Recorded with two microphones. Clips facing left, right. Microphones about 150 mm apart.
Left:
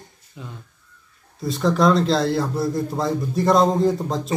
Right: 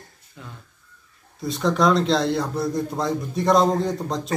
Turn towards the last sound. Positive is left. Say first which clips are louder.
# left 5 dB
turn(degrees=0)  # may be behind; listen again after turning